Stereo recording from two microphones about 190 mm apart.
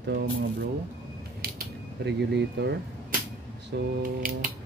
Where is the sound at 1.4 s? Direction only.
55° right (ahead or behind).